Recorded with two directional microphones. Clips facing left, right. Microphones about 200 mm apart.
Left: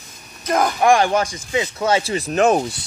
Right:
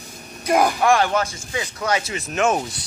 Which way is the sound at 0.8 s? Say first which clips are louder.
Left 3 dB; 15° left (ahead or behind).